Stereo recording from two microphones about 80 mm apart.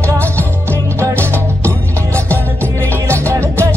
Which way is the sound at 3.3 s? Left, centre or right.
Right.